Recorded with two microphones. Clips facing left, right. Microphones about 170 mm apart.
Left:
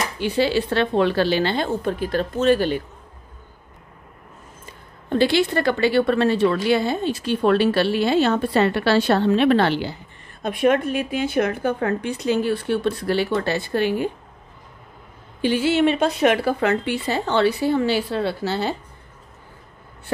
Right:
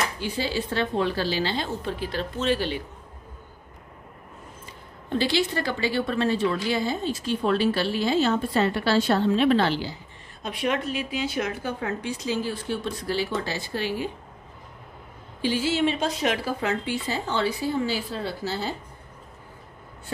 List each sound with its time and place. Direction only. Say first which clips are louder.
0.2 s a woman's voice: left 8 dB; 70° left (ahead or behind); by 2.8 s 50° left (ahead or behind)
5.1 s a woman's voice: left 6 dB; 55° left (ahead or behind)
15.4 s a woman's voice: left 5 dB; 60° left (ahead or behind)